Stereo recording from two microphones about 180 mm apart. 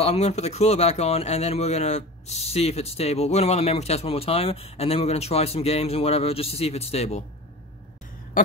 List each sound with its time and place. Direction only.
0.0 s speech: 35° left (ahead or behind)